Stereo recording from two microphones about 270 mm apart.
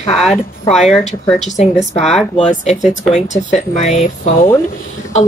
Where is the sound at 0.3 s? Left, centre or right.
Left.